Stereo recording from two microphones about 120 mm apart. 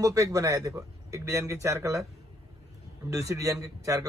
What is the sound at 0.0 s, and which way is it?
A man's voice, 30° right (ahead or behind).